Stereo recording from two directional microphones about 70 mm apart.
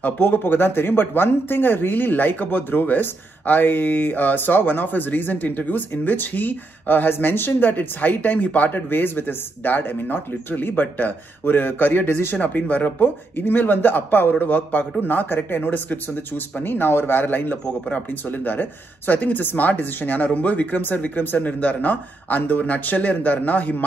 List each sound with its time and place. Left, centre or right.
0.0 s speech: left